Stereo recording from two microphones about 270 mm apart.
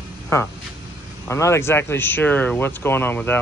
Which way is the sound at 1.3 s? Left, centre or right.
Centre.